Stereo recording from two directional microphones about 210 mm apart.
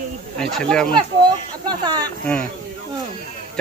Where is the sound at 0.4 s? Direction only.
Centre (ahead or behind).